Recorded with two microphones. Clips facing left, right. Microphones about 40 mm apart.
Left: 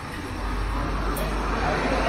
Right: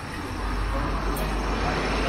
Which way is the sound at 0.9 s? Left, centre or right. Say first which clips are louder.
Left 1 dB; centre.